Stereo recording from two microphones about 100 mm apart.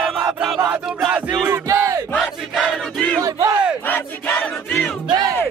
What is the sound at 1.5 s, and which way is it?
Battle cry, 30° right (ahead or behind).